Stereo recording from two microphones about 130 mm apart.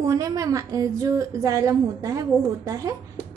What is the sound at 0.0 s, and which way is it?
A woman's voice, 25° right (ahead or behind).